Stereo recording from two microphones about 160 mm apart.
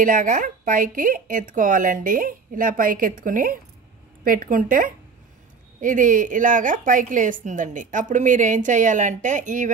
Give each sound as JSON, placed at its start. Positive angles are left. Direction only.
{"t": 0.0, "sound": "a woman's voice", "side_deg": -55}